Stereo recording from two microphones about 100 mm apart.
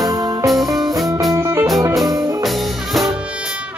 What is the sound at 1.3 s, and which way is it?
Music, 25° right (ahead or behind).